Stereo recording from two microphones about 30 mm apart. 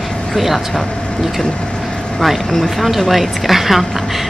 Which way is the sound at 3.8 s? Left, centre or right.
Centre.